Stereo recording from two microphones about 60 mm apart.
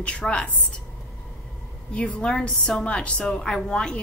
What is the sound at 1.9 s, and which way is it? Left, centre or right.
A woman's voice, left.